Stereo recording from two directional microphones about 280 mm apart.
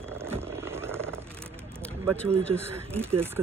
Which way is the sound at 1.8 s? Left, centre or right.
Centre.